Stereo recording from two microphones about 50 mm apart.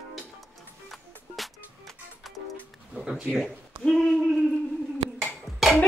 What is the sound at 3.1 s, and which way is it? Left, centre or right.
Speech, centre.